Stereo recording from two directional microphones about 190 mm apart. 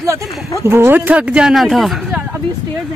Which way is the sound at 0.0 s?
15° right (ahead or behind).